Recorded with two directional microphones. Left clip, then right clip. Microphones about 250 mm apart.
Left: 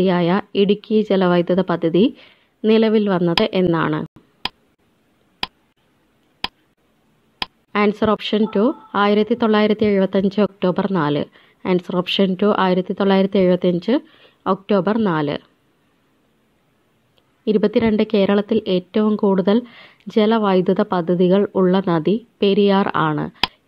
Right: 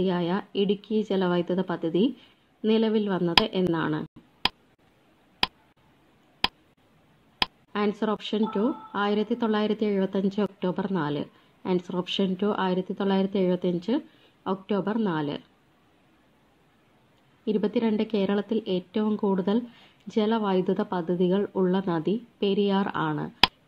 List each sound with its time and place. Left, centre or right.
0.0 s a woman's voice: left
4.5 s tick: centre
5.4 s a sound: centre
7.7 s a woman's voice: left
17.5 s a woman's voice: left